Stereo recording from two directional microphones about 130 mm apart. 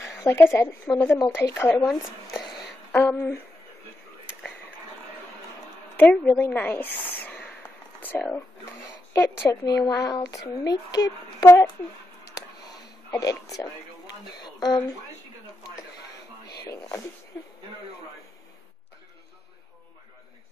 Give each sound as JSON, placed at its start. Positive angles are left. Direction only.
{"t": 0.2, "sound": "speech", "side_deg": 20}
{"t": 1.9, "sound": "speech", "side_deg": 0}
{"t": 2.9, "sound": "speech", "side_deg": 15}
{"t": 5.9, "sound": "speech", "side_deg": 10}
{"t": 13.2, "sound": "speech", "side_deg": 25}
{"t": 16.6, "sound": "a sound", "side_deg": 20}